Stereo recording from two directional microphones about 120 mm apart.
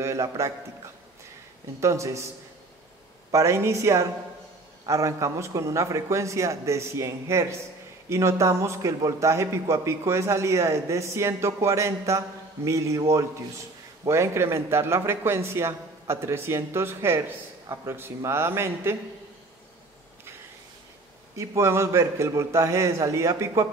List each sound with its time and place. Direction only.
0.0 s a man's voice: 25° right (ahead or behind)
1.8 s a man's voice: 25° right (ahead or behind)
3.3 s a man's voice: 25° right (ahead or behind)
14.0 s a man's voice: 25° right (ahead or behind)
21.4 s a man's voice: 20° right (ahead or behind)